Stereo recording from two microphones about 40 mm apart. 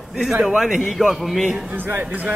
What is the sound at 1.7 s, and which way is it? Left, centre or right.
Speech, right.